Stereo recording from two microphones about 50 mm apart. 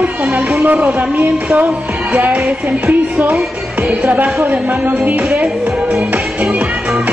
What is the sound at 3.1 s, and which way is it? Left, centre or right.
Music, right.